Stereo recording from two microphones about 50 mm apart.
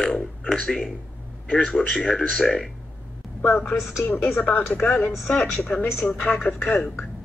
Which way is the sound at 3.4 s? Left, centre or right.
Left.